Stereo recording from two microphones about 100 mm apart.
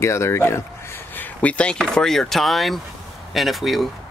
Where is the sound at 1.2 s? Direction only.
15° left (ahead or behind).